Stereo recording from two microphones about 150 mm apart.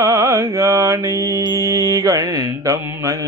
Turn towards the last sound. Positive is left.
turn(degrees=-20)  # may be behind; listen again after turning